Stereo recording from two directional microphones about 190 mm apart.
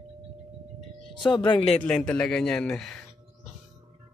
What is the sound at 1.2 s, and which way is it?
Speech, 25° left (ahead or behind).